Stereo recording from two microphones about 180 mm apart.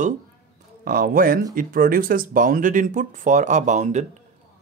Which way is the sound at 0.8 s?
50° right (ahead or behind).